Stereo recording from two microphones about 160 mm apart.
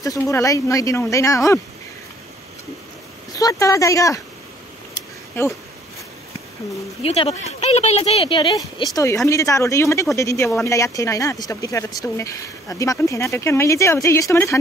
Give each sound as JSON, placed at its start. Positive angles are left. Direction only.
{"t": 0.0, "sound": "speech", "side_deg": 20}
{"t": 3.3, "sound": "speech", "side_deg": 20}
{"t": 5.4, "sound": "speech", "side_deg": 15}
{"t": 7.0, "sound": "speech", "side_deg": 40}
{"t": 8.9, "sound": "speech", "side_deg": 20}